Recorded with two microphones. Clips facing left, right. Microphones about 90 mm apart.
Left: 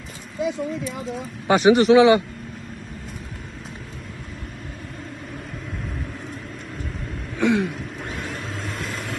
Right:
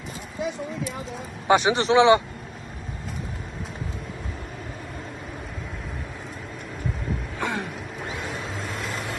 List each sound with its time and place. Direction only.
1.5 s a man's voice: 25° right (ahead or behind)
7.3 s vehicle: centre (ahead or behind)